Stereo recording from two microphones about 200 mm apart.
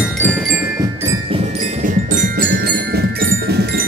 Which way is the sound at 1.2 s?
30° right (ahead or behind).